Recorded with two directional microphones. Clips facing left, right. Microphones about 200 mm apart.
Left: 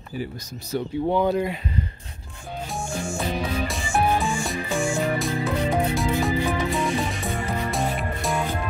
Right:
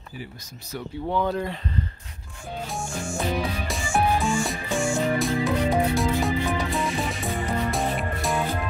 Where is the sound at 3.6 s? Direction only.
Centre (ahead or behind).